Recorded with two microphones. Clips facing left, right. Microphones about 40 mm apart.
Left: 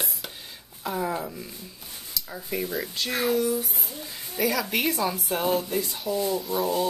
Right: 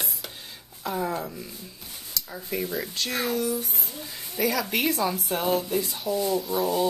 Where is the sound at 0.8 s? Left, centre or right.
Centre.